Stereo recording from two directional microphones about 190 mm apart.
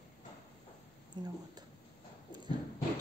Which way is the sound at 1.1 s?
25° right (ahead or behind).